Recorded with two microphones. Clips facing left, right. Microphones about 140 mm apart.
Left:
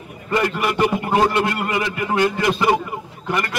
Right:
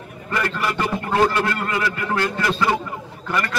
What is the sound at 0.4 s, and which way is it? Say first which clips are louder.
A man's voice: left 4 dB; 15° left (ahead or behind).